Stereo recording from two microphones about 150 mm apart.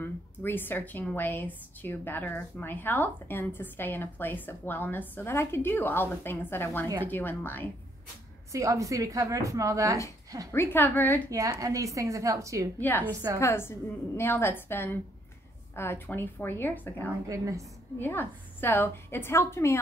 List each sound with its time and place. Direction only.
0.0 s a woman's voice: 15° left (ahead or behind)
8.5 s a woman's voice: 20° right (ahead or behind)
10.5 s a woman's voice: 15° left (ahead or behind)
11.2 s a woman's voice: 25° right (ahead or behind)
12.7 s a woman's voice: 10° left (ahead or behind)
13.0 s a woman's voice: 20° right (ahead or behind)
13.4 s a woman's voice: 15° left (ahead or behind)
17.3 s a woman's voice: 20° right (ahead or behind)
17.9 s a woman's voice: 15° left (ahead or behind)